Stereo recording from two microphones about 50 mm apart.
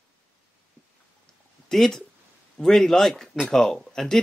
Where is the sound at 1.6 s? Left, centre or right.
Centre.